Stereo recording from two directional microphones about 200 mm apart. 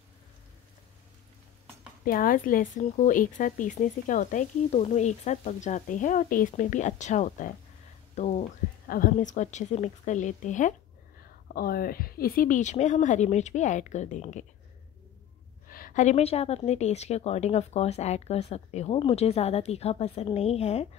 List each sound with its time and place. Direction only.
2.0 s speech: 45° left (ahead or behind)
11.4 s speech: 50° left (ahead or behind)
15.7 s speech: 40° left (ahead or behind)